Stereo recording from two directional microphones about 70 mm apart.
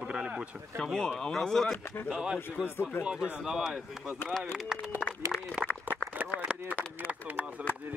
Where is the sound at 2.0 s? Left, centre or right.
Centre.